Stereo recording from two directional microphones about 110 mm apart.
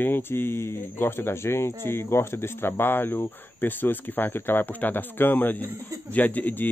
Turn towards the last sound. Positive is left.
turn(degrees=15)  # may be behind; listen again after turning